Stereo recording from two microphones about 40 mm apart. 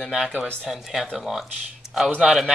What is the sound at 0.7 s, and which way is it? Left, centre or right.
Speech, centre.